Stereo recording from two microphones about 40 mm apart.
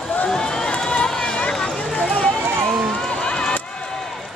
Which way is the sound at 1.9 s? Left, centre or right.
Left.